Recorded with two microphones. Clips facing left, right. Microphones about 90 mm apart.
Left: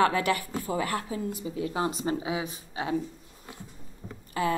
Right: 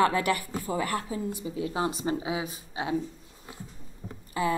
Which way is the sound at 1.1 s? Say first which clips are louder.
Even; 30° right (ahead or behind).